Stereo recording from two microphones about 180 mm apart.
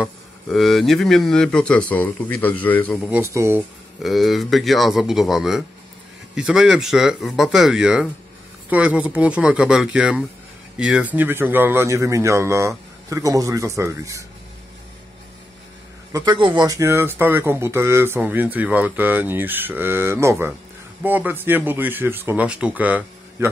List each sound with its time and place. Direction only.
0.0 s speech: centre (ahead or behind)
3.3 s speech: 15° right (ahead or behind)
4.0 s speech: centre (ahead or behind); by 14.2 s 15° right (ahead or behind)
16.1 s speech: 25° right (ahead or behind); by 23.5 s 10° right (ahead or behind)